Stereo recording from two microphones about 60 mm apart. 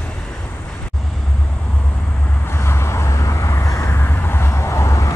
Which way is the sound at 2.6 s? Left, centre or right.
Left.